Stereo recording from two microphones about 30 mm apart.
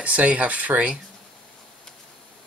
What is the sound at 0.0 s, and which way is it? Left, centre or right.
Speech, right.